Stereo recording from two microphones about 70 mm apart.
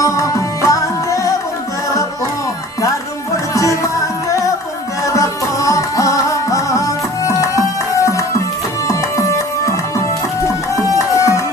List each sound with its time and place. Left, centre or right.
0.0 s music: left
3.5 s music: left